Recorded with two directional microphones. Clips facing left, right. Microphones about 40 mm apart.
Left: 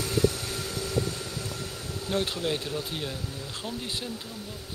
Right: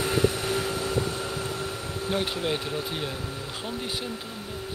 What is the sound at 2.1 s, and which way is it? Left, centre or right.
Speech, centre.